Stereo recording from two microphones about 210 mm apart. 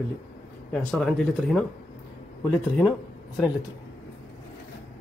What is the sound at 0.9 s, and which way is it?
Speech, centre (ahead or behind).